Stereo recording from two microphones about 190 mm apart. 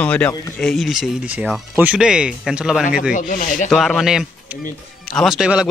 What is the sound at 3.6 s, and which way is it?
Speech, centre (ahead or behind).